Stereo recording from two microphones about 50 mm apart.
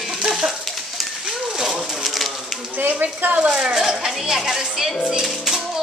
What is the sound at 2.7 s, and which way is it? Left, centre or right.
Speech, right.